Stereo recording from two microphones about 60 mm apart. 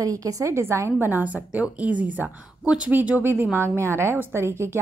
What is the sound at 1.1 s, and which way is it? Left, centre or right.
A woman's voice, right.